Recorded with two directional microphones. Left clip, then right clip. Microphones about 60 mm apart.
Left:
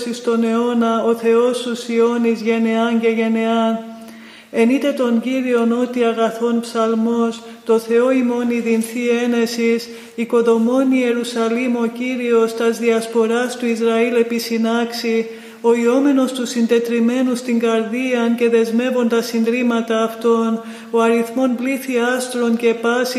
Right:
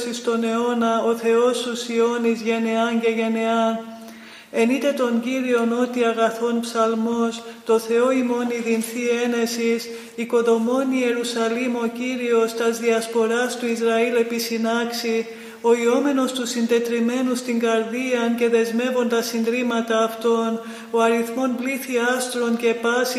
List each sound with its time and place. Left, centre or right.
0.4 s a man's voice: centre
8.5 s a man's voice: left